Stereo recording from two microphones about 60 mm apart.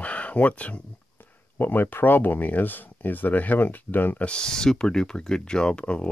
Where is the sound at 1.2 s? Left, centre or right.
Left.